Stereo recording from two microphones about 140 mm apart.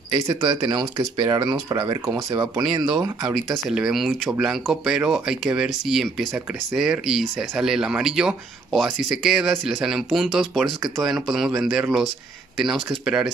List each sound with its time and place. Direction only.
0.3 s speech: 30° right (ahead or behind)
3.3 s speech: 5° right (ahead or behind)